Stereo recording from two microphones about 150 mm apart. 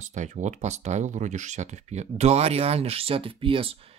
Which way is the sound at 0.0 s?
55° right (ahead or behind).